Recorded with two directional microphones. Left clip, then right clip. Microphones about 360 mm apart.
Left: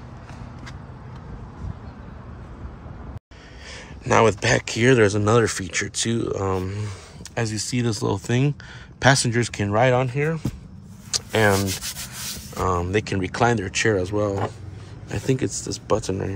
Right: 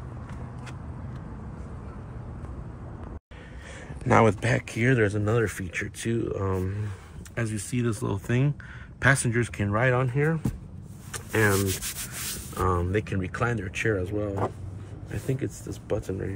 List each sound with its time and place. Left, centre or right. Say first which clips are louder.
3.7 s speech: left 3 dB; centre
11.1 s a sound: left 5 dB; centre
12.5 s speech: left 4 dB; centre